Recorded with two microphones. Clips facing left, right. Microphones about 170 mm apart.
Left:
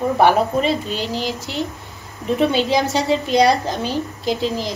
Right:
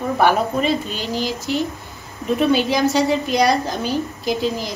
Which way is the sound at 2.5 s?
25° left (ahead or behind).